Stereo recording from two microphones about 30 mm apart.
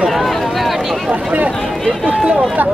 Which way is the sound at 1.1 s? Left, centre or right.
Right.